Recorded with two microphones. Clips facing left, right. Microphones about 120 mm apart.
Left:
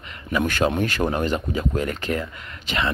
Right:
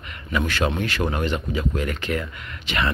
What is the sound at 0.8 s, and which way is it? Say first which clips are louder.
Speech: left 2 dB; 45° left (ahead or behind).